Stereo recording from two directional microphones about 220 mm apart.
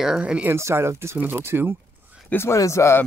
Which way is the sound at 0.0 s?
5° right (ahead or behind).